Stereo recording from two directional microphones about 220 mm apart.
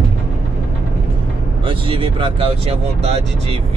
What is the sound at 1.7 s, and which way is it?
Speech, 25° right (ahead or behind).